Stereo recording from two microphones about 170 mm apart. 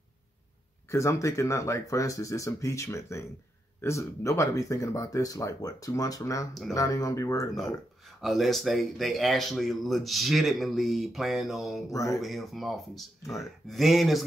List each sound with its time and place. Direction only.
0.8 s speech: 15° left (ahead or behind)
8.2 s speech: centre (ahead or behind)
11.9 s speech: 20° left (ahead or behind)
12.2 s speech: centre (ahead or behind)